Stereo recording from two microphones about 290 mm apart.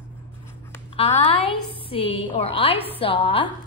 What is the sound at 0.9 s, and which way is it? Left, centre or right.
A woman's voice, centre.